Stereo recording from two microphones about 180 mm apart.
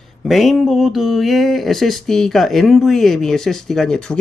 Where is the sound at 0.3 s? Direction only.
Centre (ahead or behind).